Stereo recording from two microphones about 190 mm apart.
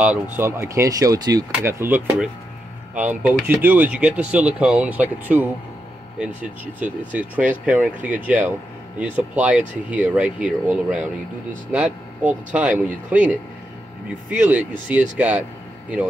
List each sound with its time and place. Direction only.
0.0 s speech: 10° right (ahead or behind)